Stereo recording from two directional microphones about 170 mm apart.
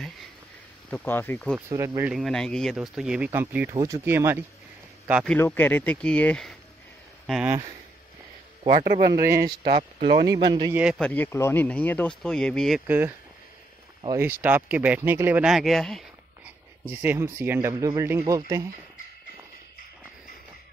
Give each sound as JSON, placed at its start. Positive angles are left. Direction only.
{"t": 0.8, "sound": "speech", "side_deg": 10}
{"t": 1.7, "sound": "speech", "side_deg": -15}
{"t": 2.0, "sound": "speech", "side_deg": 0}
{"t": 5.2, "sound": "speech", "side_deg": 10}
{"t": 9.1, "sound": "speech", "side_deg": -20}
{"t": 9.6, "sound": "speech", "side_deg": -35}
{"t": 10.2, "sound": "speech", "side_deg": -25}
{"t": 10.7, "sound": "speech", "side_deg": -5}
{"t": 11.0, "sound": "speech", "side_deg": 10}
{"t": 12.8, "sound": "speech", "side_deg": -10}
{"t": 16.9, "sound": "speech", "side_deg": -10}